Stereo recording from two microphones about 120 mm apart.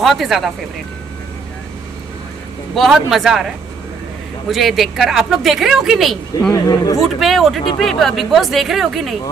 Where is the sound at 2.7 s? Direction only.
Centre (ahead or behind).